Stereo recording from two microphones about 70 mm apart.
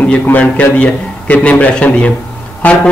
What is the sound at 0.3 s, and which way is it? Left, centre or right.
A man's voice, left.